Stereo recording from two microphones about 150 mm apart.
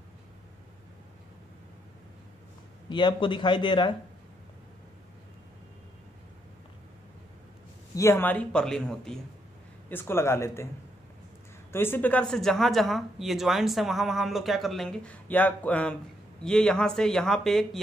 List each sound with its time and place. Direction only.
2.9 s speech: 30° left (ahead or behind)
7.9 s a man's voice: 20° left (ahead or behind)
9.8 s a man's voice: 15° left (ahead or behind)
11.7 s speech: 15° left (ahead or behind)